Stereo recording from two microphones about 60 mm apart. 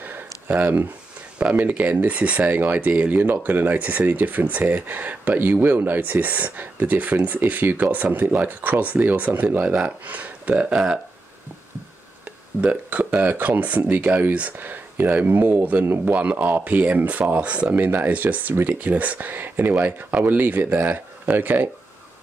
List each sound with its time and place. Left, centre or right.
0.5 s speech: right
10.5 s speech: centre
12.3 s speech: right
16.1 s speech: right